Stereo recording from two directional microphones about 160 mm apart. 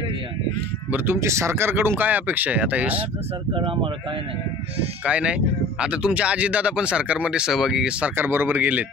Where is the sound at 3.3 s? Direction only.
35° right (ahead or behind).